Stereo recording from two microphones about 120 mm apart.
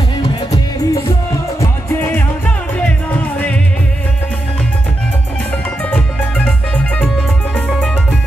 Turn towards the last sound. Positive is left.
turn(degrees=10)  # may be behind; listen again after turning